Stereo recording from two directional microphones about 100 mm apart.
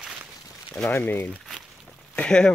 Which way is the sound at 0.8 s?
20° left (ahead or behind).